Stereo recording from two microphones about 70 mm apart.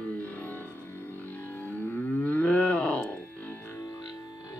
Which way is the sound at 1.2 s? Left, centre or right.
Left.